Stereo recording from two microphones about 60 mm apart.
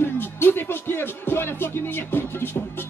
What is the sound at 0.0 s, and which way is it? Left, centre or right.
Speech, left.